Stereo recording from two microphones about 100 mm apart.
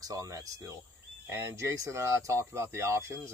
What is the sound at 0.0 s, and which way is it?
Speech, 35° right (ahead or behind).